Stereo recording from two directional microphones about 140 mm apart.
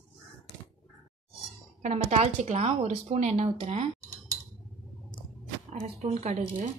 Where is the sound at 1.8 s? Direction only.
55° right (ahead or behind).